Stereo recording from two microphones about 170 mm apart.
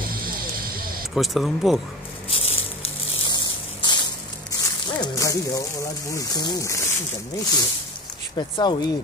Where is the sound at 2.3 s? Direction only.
35° left (ahead or behind).